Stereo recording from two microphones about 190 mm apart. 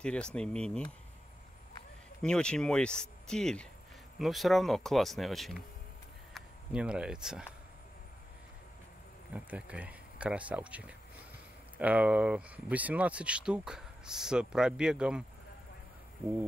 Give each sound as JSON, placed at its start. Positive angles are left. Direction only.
{"t": 0.0, "sound": "speech", "side_deg": 5}
{"t": 2.2, "sound": "speech", "side_deg": 5}
{"t": 9.3, "sound": "speech", "side_deg": -5}